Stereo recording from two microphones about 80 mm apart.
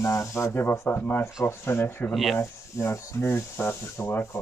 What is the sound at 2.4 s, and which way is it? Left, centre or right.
Speech, left.